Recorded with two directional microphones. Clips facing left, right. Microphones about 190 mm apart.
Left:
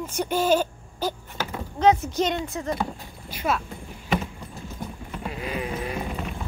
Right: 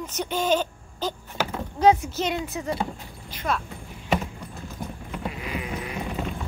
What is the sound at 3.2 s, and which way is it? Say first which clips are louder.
Speech: left 2 dB; 10° left (ahead or behind).